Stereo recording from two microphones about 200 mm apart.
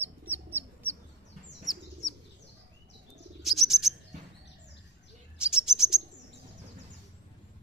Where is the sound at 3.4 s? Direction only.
Centre (ahead or behind).